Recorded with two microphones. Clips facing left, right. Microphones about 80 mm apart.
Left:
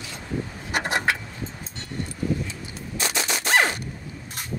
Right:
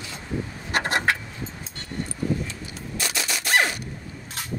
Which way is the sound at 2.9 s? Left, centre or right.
Left.